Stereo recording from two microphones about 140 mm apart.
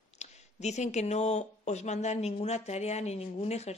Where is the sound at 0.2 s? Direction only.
55° left (ahead or behind).